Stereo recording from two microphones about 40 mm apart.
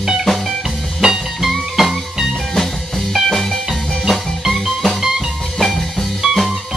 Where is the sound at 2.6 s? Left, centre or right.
Centre.